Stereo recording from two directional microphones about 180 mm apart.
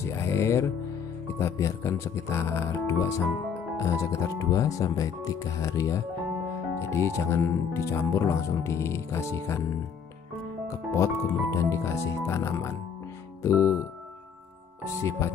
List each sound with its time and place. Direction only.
0.0 s music: 15° left (ahead or behind)
1.2 s speech: 15° left (ahead or behind)
10.7 s speech: 15° left (ahead or behind)
15.0 s speech: 15° left (ahead or behind)